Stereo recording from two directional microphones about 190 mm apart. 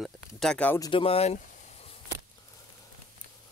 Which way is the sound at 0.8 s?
25° left (ahead or behind).